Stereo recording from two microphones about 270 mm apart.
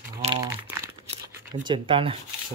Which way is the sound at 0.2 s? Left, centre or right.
Centre.